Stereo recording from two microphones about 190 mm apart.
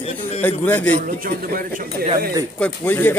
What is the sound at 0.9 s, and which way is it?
Speech, 50° right (ahead or behind).